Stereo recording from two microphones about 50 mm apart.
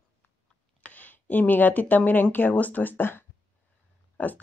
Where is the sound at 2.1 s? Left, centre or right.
Left.